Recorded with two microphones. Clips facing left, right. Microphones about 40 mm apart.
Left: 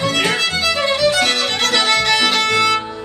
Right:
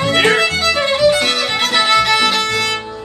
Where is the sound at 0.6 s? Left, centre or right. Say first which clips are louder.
Right 3 dB; right.